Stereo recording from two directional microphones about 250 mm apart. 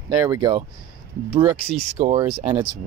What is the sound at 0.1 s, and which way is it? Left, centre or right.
Speech, centre.